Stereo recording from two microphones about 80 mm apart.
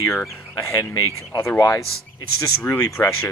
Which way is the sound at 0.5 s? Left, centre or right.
Left.